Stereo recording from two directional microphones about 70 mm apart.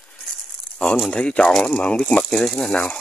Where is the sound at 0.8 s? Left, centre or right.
Centre.